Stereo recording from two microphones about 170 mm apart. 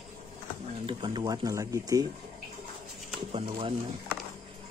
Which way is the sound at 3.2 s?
35° right (ahead or behind).